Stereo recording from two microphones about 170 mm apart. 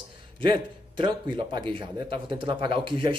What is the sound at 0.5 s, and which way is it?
Speech, 30° right (ahead or behind).